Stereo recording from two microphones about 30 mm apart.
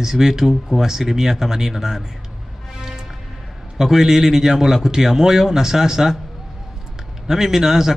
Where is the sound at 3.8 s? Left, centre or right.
Centre.